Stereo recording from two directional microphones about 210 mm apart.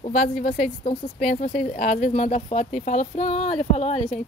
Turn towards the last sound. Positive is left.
turn(degrees=30)  # may be behind; listen again after turning